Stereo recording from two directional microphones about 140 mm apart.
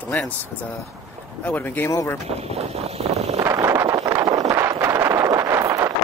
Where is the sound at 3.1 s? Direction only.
50° right (ahead or behind).